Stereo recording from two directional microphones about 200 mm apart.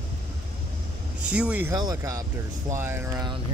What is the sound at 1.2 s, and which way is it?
Speech, 5° right (ahead or behind).